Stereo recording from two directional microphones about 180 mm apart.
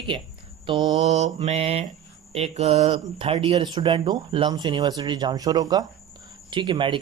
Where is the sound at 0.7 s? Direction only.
25° right (ahead or behind).